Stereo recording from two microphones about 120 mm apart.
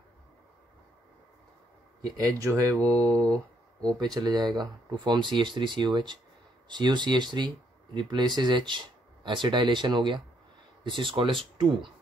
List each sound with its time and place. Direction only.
2.0 s speech: 30° right (ahead or behind)
3.3 s a sound: 5° left (ahead or behind)
4.0 s speech: 35° right (ahead or behind)